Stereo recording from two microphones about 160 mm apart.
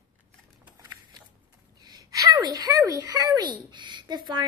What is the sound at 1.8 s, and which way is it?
Speech, 25° right (ahead or behind).